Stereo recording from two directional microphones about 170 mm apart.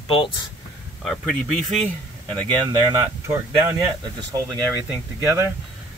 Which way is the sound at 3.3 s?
15° right (ahead or behind).